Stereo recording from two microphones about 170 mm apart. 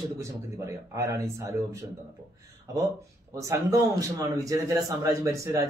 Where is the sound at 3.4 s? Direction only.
20° right (ahead or behind).